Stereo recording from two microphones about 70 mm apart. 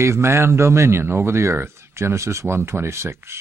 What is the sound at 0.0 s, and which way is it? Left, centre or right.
Speech, right.